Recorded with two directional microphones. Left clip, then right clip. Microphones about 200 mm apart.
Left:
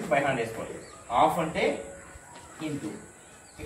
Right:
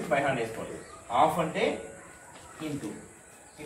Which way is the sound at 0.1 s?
15° right (ahead or behind).